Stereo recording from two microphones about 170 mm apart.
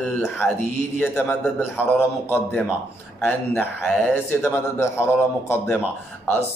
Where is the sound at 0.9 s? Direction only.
5° left (ahead or behind).